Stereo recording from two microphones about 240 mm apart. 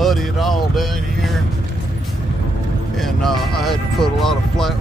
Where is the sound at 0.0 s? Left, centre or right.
Centre.